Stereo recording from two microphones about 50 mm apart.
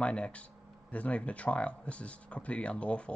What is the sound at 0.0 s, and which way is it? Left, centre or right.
Speech, left.